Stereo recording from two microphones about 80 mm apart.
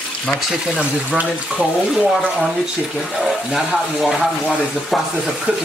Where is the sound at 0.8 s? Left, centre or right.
Centre.